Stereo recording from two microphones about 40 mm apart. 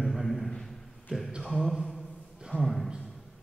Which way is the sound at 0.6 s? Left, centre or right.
Centre.